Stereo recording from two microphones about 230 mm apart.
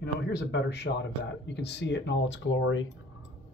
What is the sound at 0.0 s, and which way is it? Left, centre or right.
Speech, left.